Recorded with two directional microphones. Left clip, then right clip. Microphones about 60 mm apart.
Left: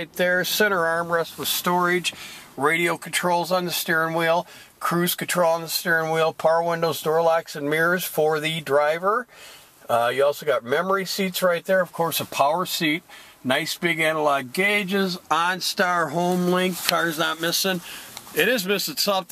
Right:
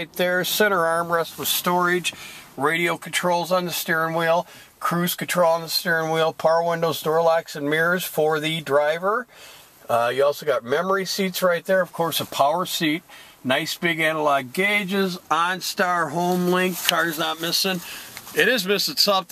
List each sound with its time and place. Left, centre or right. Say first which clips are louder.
0.0 s speech: even; right
1.5 s speech: right 1 dB; centre
12.0 s speech: right 1 dB; centre
16.8 s speech: right 1 dB; left
18.3 s speech: right 2 dB; centre